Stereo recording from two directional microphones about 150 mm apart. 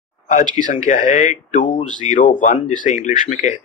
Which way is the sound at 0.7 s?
55° left (ahead or behind).